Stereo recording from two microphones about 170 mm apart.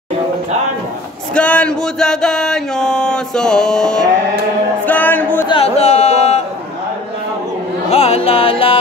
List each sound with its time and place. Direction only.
1.3 s music: 5° left (ahead or behind)
5.5 s a sound: 35° left (ahead or behind)
7.9 s music: 35° left (ahead or behind)